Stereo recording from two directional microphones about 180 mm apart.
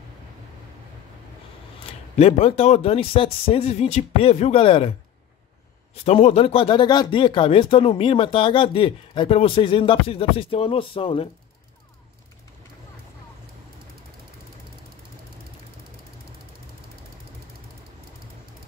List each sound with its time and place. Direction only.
2.1 s speech: 35° left (ahead or behind)
6.0 s speech: 35° left (ahead or behind)